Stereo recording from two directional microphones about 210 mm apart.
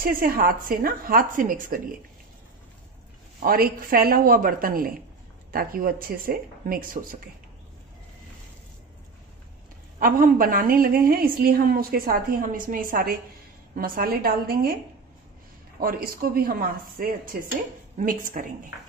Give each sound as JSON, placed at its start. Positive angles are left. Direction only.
{"t": 0.0, "sound": "a woman's voice", "side_deg": -40}
{"t": 3.4, "sound": "a woman's voice", "side_deg": -45}
{"t": 9.9, "sound": "a woman's voice", "side_deg": -40}
{"t": 15.8, "sound": "a woman's voice", "side_deg": -45}